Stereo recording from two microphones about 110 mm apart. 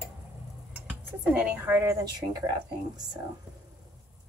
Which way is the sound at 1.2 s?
10° right (ahead or behind).